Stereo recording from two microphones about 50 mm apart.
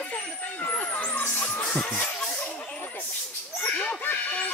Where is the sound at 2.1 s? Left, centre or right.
Left.